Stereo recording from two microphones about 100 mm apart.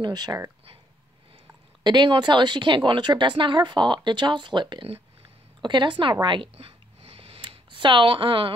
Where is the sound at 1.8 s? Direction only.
50° right (ahead or behind).